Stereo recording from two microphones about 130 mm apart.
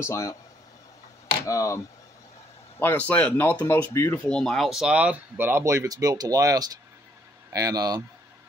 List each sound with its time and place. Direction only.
0.0 s speech: 25° left (ahead or behind)
1.4 s speech: 25° left (ahead or behind)
2.8 s speech: 15° left (ahead or behind)
4.3 s speech: 5° left (ahead or behind); by 8.0 s 30° right (ahead or behind)